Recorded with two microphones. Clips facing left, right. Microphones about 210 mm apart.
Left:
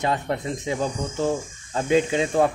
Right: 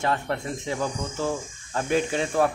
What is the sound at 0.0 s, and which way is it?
Speech, 15° left (ahead or behind).